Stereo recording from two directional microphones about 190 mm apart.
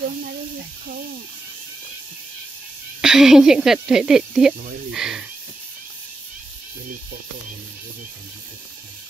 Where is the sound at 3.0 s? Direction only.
Centre (ahead or behind).